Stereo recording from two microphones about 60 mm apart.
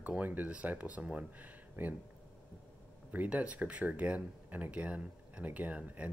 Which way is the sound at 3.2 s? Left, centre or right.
Right.